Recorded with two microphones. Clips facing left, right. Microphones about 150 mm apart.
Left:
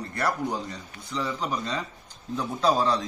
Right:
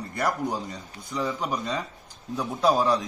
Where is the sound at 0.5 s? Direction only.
20° right (ahead or behind).